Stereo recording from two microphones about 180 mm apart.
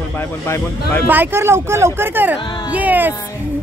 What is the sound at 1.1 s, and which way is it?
Speech, 10° right (ahead or behind).